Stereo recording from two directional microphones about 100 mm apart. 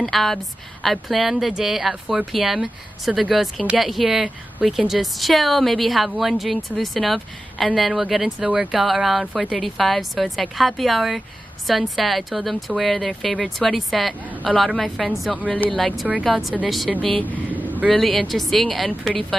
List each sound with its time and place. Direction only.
0.0 s a woman's voice: centre (ahead or behind)
15.4 s a woman's voice: 10° left (ahead or behind)
17.3 s a sound: 15° right (ahead or behind)
17.8 s a woman's voice: centre (ahead or behind)